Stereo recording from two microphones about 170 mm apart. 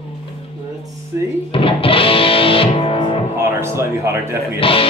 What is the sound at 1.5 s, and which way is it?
Music, 30° left (ahead or behind).